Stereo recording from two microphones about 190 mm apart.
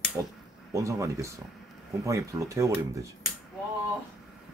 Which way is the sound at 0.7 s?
15° right (ahead or behind).